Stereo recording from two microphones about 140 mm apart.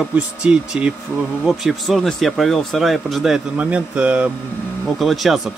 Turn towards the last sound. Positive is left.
turn(degrees=0)  # may be behind; listen again after turning